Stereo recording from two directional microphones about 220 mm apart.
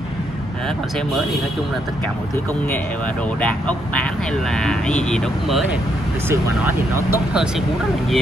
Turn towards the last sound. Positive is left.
turn(degrees=-10)  # may be behind; listen again after turning